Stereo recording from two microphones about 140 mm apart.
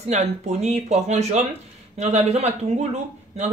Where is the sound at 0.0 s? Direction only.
50° right (ahead or behind).